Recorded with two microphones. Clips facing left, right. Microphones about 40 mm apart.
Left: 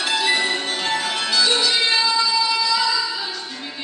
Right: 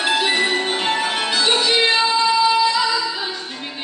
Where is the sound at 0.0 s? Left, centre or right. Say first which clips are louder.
Right 2 dB; right.